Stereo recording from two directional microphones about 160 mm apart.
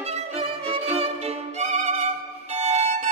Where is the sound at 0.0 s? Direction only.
40° right (ahead or behind).